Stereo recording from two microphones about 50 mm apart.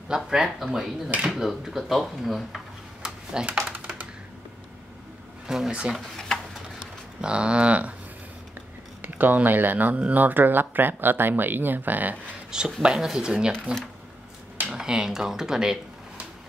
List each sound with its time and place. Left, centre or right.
0.1 s speech: centre
3.0 s a sound: centre
5.7 s speech: centre
6.1 s a sound: centre
7.2 s speech: centre
9.0 s speech: right
12.4 s a sound: centre
12.8 s speech: centre
13.7 s speech: right
14.7 s speech: centre